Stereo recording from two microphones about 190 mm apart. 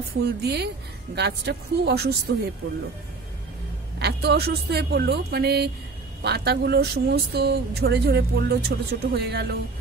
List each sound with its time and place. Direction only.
0.2 s speech: 60° right (ahead or behind)
4.0 s speech: 60° right (ahead or behind)